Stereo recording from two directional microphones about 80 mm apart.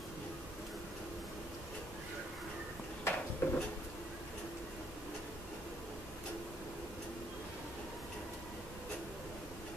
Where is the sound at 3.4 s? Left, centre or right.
Left.